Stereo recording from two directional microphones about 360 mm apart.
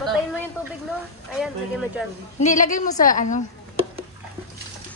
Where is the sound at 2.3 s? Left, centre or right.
Centre.